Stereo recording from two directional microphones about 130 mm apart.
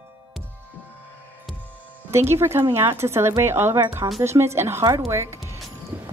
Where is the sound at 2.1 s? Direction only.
20° right (ahead or behind).